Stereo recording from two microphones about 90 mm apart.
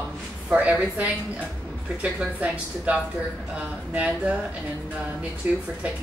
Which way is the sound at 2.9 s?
15° right (ahead or behind).